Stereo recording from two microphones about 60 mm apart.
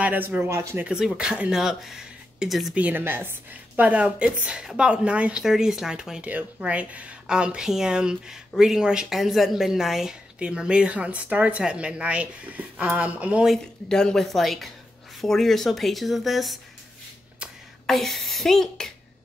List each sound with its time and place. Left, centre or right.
0.0 s speech: right
0.4 s speech: right
0.8 s speech: centre
1.5 s speech: centre
2.7 s speech: right
3.0 s a woman's voice: right
3.8 s speech: right
5.4 s speech: centre
6.2 s speech: right; by 10.1 s centre
10.4 s speech: centre
13.8 s speech: centre
17.8 s speech: centre